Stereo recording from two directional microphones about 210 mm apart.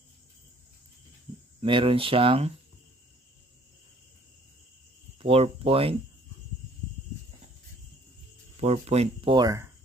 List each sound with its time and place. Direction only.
1.6 s speech: 25° right (ahead or behind)
5.2 s speech: 25° right (ahead or behind)
8.5 s speech: 30° right (ahead or behind)